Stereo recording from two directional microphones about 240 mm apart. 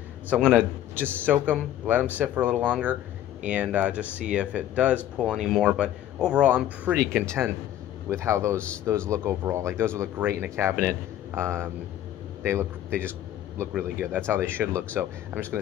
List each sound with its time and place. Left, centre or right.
0.3 s a man's voice: centre
13.6 s a man's voice: centre